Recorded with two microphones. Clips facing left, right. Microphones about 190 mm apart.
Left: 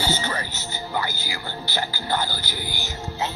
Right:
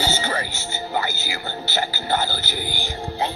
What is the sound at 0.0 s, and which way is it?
Music, 25° right (ahead or behind).